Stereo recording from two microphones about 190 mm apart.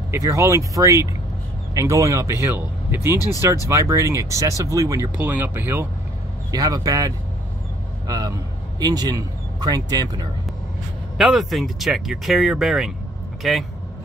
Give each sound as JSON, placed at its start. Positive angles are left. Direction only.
{"t": 0.1, "sound": "a man's voice", "side_deg": -15}
{"t": 11.1, "sound": "speech", "side_deg": 0}